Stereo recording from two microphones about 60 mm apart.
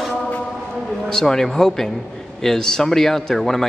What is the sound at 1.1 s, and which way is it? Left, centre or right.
A man's voice, centre.